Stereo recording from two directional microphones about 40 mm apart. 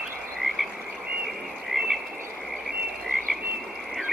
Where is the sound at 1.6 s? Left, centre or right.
Centre.